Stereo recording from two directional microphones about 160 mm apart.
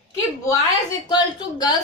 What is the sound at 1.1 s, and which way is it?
Speech, 25° left (ahead or behind).